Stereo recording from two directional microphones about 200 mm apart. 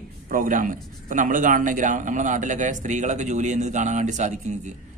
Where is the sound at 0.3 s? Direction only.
40° right (ahead or behind).